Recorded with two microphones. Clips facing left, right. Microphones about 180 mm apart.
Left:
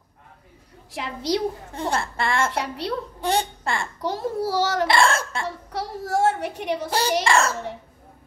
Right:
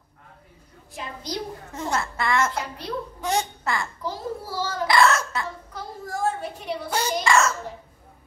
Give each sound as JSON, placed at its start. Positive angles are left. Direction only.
{"t": 0.9, "sound": "a child's voice", "side_deg": 80}
{"t": 1.7, "sound": "speech", "side_deg": 30}
{"t": 2.5, "sound": "a child's voice", "side_deg": 75}
{"t": 3.2, "sound": "speech", "side_deg": 30}
{"t": 4.0, "sound": "a child's voice", "side_deg": 85}
{"t": 4.8, "sound": "speech", "side_deg": 30}
{"t": 5.7, "sound": "a woman's voice", "side_deg": 85}
{"t": 7.2, "sound": "a child's voice", "side_deg": 30}